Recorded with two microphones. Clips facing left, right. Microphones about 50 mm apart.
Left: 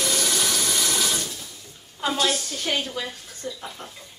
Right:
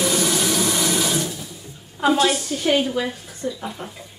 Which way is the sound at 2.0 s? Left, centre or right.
Centre.